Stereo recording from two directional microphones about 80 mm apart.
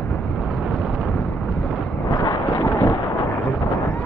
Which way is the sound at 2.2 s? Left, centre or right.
Left.